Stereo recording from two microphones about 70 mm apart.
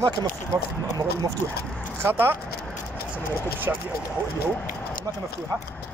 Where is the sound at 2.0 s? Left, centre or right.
Right.